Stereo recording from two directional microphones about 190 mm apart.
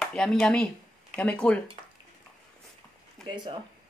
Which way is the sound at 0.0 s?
5° left (ahead or behind).